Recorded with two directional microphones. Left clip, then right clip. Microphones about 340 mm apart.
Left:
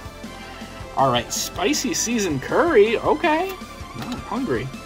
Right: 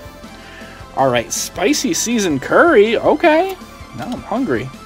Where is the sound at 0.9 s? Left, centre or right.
Centre.